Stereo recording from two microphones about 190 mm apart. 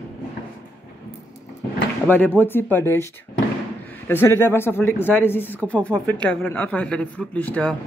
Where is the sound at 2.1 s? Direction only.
10° left (ahead or behind).